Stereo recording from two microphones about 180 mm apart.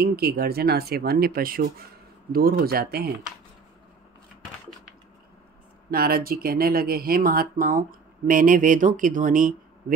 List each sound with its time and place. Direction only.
0.0 s speech: 60° right (ahead or behind)
5.9 s speech: 55° right (ahead or behind)